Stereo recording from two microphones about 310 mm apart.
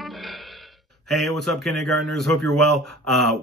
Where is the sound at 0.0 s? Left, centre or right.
Centre.